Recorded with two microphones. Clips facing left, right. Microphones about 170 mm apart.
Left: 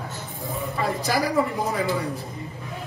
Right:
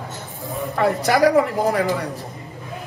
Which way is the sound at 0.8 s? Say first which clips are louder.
Right 8 dB; 70° right (ahead or behind).